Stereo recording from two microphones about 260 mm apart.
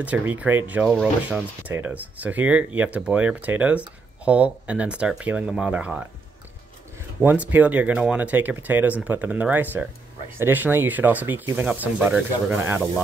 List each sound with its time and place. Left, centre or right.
0.0 s speech: centre
7.2 s speech: centre